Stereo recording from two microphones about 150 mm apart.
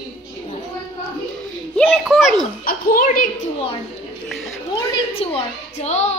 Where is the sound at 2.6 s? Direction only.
70° left (ahead or behind).